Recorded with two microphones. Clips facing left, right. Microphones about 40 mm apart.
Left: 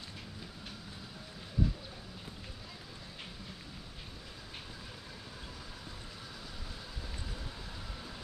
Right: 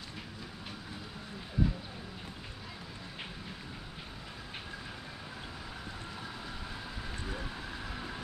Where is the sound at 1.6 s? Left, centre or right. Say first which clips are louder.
Right 2 dB; centre.